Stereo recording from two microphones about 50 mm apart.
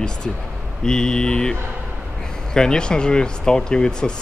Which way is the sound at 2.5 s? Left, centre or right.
Centre.